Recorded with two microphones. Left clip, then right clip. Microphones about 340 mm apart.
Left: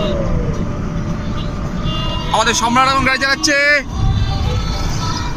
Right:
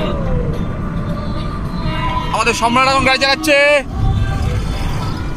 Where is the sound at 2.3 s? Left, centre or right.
Centre.